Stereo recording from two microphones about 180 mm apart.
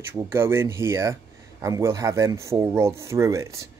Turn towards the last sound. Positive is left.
turn(degrees=-15)  # may be behind; listen again after turning